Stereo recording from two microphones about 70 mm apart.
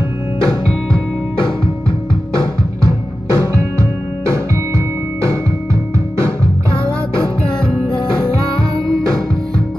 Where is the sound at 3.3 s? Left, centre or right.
Right.